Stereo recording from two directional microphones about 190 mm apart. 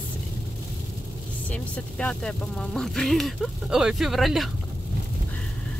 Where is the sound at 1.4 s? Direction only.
5° left (ahead or behind).